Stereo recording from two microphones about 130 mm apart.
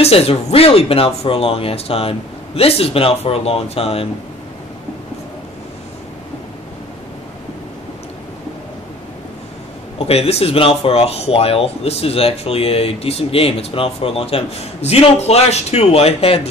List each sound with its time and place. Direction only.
0.0 s speech: 50° left (ahead or behind)
9.9 s speech: 50° left (ahead or behind)